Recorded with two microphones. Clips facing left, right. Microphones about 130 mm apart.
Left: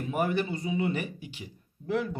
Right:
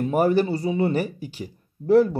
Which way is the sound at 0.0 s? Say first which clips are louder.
Right 9 dB; 40° right (ahead or behind).